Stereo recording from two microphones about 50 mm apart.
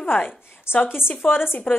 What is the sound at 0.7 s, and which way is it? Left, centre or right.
Speech, left.